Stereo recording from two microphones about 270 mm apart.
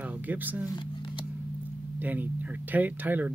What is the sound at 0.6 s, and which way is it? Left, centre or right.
Speech, centre.